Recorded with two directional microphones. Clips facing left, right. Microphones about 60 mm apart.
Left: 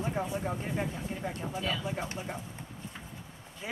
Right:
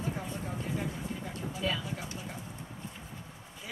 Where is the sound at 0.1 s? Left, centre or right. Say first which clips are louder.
Left 5 dB; left.